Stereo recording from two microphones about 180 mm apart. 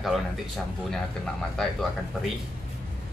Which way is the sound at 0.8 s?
Centre (ahead or behind).